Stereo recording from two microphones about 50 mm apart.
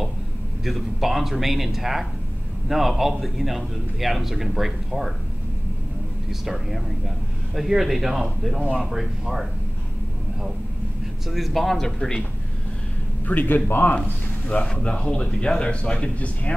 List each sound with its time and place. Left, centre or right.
0.7 s a man's voice: centre
6.4 s a man's voice: centre
11.2 s a man's voice: centre
13.3 s a man's voice: left
14.5 s speech: left